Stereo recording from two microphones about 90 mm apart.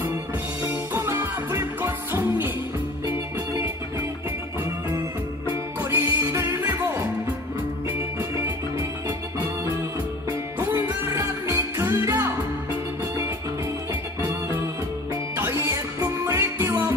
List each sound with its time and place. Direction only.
0.9 s music: 25° right (ahead or behind)
5.8 s music: 25° right (ahead or behind)
8.2 s music: 30° right (ahead or behind)
10.6 s music: 30° right (ahead or behind)
15.3 s music: 30° right (ahead or behind)